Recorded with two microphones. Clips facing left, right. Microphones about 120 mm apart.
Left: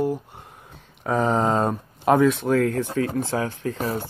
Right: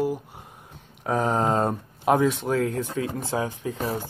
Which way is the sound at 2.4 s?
20° right (ahead or behind).